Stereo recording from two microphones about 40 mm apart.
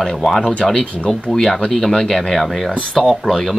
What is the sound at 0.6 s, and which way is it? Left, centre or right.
Speech, centre.